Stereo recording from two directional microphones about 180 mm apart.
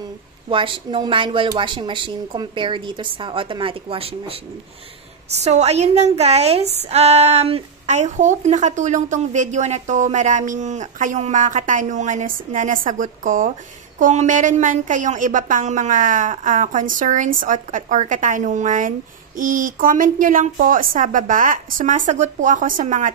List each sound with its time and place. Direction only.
0.5 s a woman's voice: 30° right (ahead or behind); by 23.1 s 45° right (ahead or behind)